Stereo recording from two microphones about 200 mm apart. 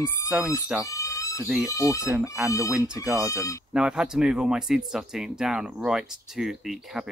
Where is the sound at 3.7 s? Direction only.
5° right (ahead or behind).